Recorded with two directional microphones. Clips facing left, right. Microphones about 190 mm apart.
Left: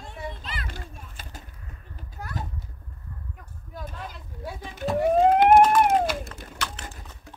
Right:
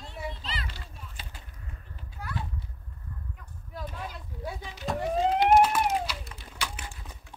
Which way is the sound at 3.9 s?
Centre (ahead or behind).